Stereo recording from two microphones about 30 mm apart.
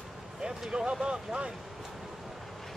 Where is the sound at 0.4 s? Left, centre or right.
Right.